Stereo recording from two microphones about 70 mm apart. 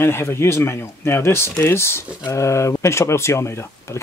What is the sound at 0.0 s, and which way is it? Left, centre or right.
Speech, left.